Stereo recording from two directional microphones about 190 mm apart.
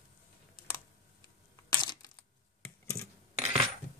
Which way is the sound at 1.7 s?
20° left (ahead or behind).